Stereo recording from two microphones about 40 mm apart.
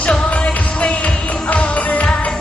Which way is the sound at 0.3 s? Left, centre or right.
Left.